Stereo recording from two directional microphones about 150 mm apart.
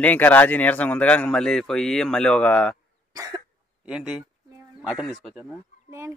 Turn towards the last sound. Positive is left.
turn(degrees=-20)  # may be behind; listen again after turning